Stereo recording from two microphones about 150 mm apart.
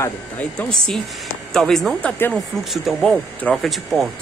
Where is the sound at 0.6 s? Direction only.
5° left (ahead or behind).